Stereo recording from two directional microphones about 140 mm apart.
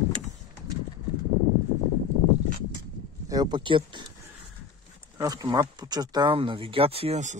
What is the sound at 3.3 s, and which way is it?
Speech, 30° right (ahead or behind).